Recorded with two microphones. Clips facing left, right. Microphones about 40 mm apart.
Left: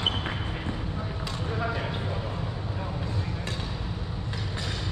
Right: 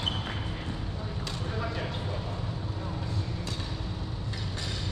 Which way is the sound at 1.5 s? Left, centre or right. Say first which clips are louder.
Left 4 dB; centre.